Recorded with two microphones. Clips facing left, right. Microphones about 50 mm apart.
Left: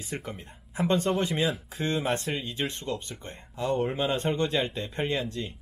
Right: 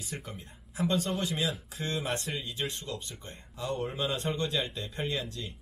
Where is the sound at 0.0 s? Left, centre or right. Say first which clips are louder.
Left 5 dB; left.